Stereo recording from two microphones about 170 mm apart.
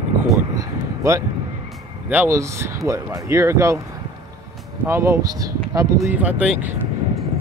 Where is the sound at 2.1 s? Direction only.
15° right (ahead or behind).